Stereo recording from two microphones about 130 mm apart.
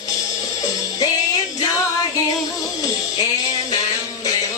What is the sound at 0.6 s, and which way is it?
Music, 25° left (ahead or behind).